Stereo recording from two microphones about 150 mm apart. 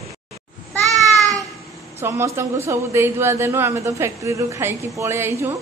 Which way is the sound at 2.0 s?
15° right (ahead or behind).